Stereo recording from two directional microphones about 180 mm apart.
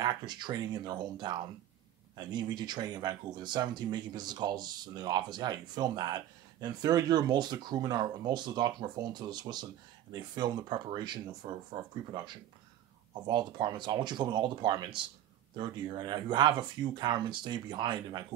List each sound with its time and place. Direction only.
0.0 s speech: 25° right (ahead or behind)